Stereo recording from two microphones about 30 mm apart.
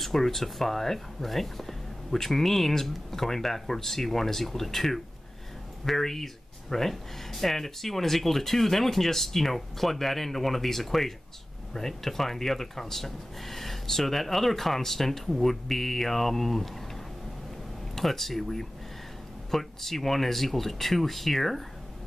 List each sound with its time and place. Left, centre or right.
0.0 s speech: centre
17.9 s speech: centre